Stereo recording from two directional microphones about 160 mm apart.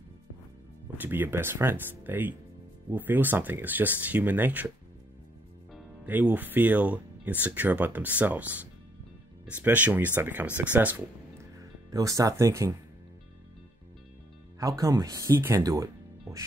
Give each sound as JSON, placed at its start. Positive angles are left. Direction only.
{"t": 0.9, "sound": "speech", "side_deg": -10}
{"t": 6.0, "sound": "speech", "side_deg": -10}
{"t": 14.6, "sound": "speech", "side_deg": -20}